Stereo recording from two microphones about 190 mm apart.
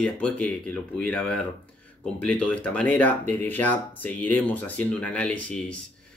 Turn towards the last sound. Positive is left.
turn(degrees=5)  # may be behind; listen again after turning